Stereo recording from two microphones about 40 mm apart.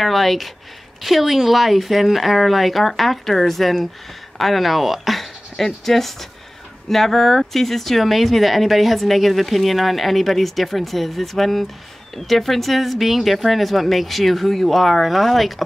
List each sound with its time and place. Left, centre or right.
0.0 s speech: centre